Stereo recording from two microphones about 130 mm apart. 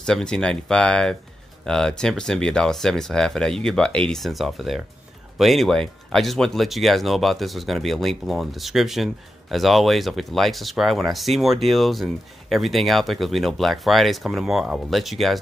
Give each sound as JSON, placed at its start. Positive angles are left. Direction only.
{"t": 0.0, "sound": "speech", "side_deg": 5}